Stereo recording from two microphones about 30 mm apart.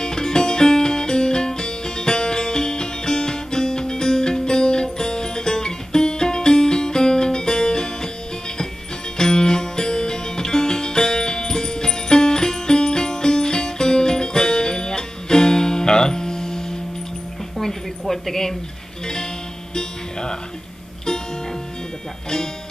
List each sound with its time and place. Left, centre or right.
0.0 s music: left
9.2 s music: left
17.6 s a sound: centre
19.7 s music: left